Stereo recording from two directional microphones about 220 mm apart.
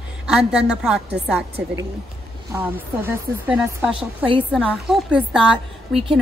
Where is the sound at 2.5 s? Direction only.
10° right (ahead or behind).